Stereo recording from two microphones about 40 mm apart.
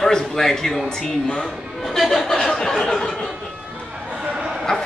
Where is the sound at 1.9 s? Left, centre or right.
Centre.